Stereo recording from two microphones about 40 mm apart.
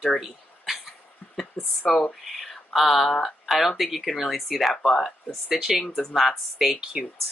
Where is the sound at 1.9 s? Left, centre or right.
Centre.